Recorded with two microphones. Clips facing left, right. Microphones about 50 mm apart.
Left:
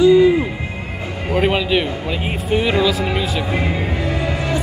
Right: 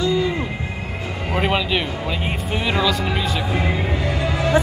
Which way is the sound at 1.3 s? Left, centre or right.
Centre.